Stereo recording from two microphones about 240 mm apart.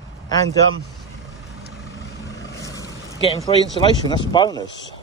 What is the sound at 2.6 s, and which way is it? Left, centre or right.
Vehicle, centre.